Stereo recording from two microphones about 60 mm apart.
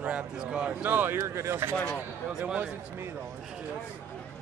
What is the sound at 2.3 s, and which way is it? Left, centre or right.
Speech, centre.